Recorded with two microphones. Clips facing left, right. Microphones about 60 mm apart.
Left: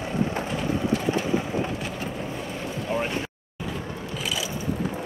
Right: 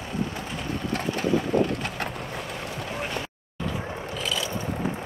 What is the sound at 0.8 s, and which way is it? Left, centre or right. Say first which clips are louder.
Vehicle: left 3 dB; right.